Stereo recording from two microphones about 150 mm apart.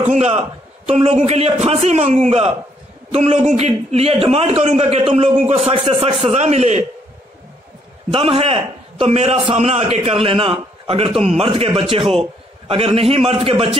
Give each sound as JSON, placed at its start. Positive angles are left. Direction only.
{"t": 0.0, "sound": "a man's voice", "side_deg": -50}
{"t": 8.1, "sound": "a man's voice", "side_deg": -40}